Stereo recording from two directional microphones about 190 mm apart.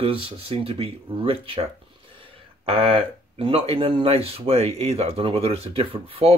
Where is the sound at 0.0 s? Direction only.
30° right (ahead or behind).